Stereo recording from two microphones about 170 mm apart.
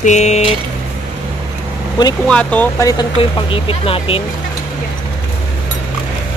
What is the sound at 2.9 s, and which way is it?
Speech, 25° left (ahead or behind).